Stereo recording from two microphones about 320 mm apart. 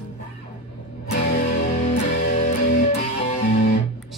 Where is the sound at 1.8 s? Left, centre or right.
Left.